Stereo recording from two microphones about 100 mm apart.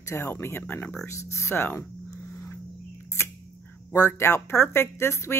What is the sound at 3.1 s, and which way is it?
Speech, 30° left (ahead or behind).